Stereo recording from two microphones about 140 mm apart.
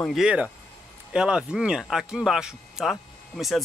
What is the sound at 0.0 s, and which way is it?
Speech, centre (ahead or behind).